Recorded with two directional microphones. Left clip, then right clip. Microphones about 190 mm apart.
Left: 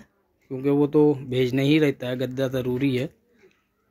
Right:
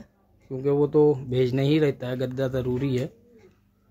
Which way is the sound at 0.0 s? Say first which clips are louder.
Right 3 dB; 25° left (ahead or behind).